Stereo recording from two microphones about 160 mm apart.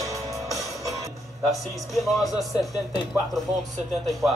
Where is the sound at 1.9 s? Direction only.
Centre (ahead or behind).